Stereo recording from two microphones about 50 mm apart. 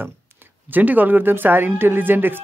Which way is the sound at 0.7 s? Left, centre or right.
Right.